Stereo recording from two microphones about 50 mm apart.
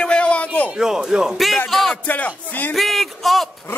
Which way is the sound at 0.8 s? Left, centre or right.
Centre.